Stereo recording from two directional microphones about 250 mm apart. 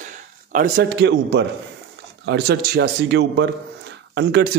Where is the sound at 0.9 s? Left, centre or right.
Right.